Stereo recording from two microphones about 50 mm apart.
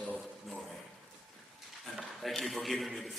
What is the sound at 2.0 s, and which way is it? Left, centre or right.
A man's voice, centre.